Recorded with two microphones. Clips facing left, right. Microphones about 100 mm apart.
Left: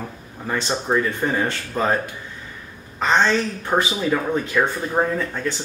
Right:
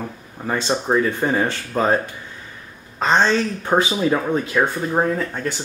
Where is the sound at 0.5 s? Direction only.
15° right (ahead or behind).